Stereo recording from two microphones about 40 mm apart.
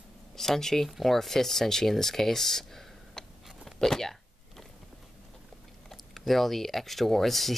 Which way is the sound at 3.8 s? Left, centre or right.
Centre.